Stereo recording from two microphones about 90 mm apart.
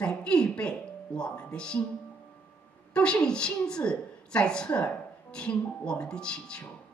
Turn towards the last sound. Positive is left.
turn(degrees=10)  # may be behind; listen again after turning